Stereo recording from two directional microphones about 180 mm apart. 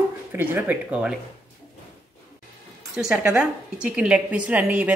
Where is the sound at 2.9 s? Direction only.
5° right (ahead or behind).